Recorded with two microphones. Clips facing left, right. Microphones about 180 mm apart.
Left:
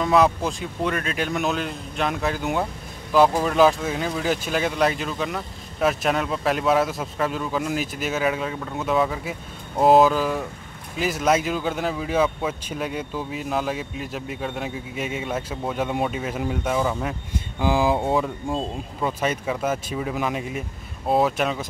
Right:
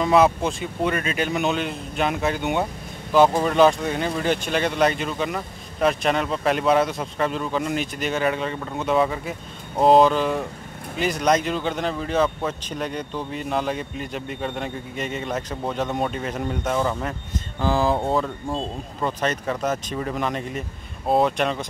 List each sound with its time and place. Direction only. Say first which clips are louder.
0.0 s speech: right 1 dB; centre (ahead or behind)